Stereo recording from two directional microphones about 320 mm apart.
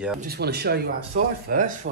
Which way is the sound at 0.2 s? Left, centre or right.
Right.